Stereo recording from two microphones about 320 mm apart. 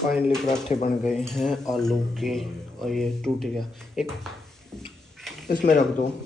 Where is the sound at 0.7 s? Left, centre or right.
Left.